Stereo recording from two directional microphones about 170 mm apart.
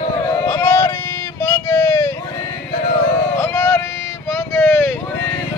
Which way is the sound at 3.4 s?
15° left (ahead or behind).